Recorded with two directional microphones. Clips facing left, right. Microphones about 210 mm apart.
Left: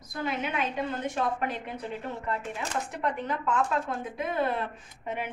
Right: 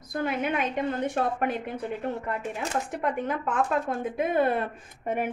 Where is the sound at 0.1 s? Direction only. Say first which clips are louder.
Right 4 dB; 55° right (ahead or behind).